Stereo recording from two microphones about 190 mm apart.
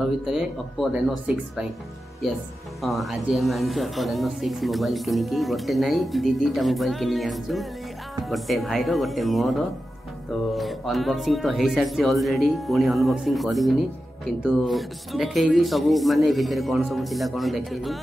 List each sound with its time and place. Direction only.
0.3 s speech: centre (ahead or behind)